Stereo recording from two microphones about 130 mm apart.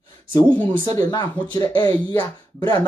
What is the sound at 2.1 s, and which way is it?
Speech, 25° left (ahead or behind).